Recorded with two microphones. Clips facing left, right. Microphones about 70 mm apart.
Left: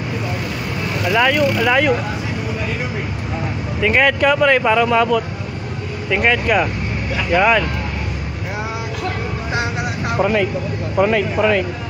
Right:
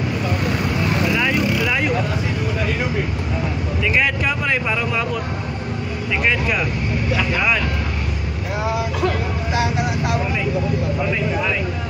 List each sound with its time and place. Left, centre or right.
1.1 s vehicle: left
3.8 s speech: left
6.2 s speech: left
10.2 s speech: left